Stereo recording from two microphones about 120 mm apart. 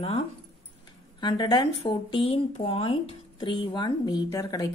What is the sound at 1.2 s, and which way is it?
Speech, 40° left (ahead or behind).